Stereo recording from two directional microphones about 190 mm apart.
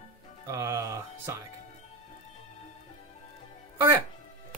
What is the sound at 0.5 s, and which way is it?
Music, 15° right (ahead or behind).